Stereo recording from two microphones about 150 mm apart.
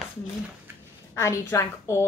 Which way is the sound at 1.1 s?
20° left (ahead or behind).